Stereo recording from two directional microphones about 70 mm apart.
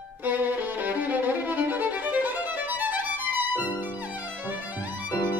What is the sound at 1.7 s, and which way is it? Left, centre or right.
Violin, right.